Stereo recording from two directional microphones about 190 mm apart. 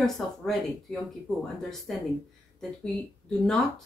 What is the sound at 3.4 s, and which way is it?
Speech, centre (ahead or behind).